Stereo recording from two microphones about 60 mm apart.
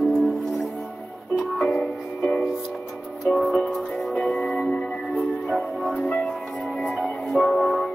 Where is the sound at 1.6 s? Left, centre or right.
Left.